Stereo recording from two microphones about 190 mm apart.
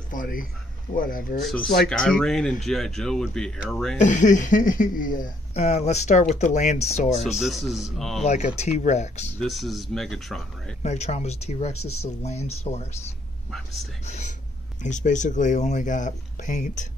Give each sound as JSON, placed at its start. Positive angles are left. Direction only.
{"t": 0.1, "sound": "speech", "side_deg": 45}
{"t": 1.4, "sound": "speech", "side_deg": 0}
{"t": 4.0, "sound": "speech", "side_deg": 40}
{"t": 7.3, "sound": "speech", "side_deg": 0}
{"t": 8.2, "sound": "speech", "side_deg": 35}
{"t": 9.4, "sound": "speech", "side_deg": 0}
{"t": 10.8, "sound": "speech", "side_deg": 35}
{"t": 14.0, "sound": "speech", "side_deg": 40}